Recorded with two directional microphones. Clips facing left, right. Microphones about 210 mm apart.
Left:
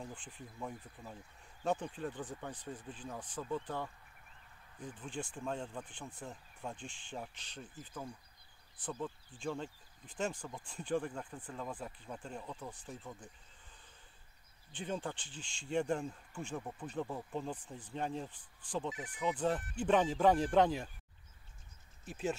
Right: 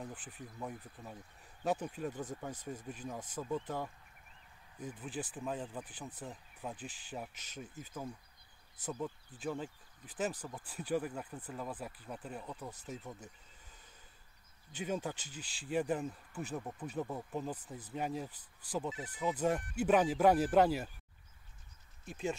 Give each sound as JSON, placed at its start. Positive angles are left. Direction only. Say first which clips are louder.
{"t": 0.0, "sound": "speech", "louder": "right 1 dB", "side_deg": -5}
{"t": 14.7, "sound": "speech", "louder": "right 2 dB", "side_deg": -10}
{"t": 18.3, "sound": "speech", "louder": "even", "side_deg": -40}
{"t": 18.7, "sound": "speech", "louder": "right 1 dB", "side_deg": -5}
{"t": 22.0, "sound": "speech", "louder": "even", "side_deg": 5}